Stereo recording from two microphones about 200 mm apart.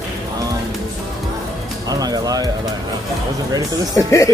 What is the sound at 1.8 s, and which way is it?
Speech, 20° right (ahead or behind).